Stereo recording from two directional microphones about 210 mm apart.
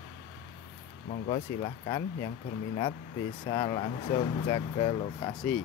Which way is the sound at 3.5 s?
20° left (ahead or behind).